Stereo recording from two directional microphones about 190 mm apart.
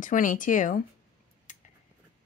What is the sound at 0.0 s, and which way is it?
Speech, 45° left (ahead or behind).